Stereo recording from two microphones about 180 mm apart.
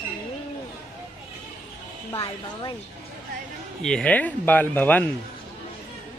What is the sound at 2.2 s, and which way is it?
Speech, 25° left (ahead or behind).